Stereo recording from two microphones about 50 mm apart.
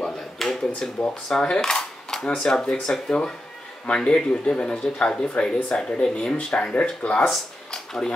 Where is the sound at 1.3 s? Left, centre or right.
Centre.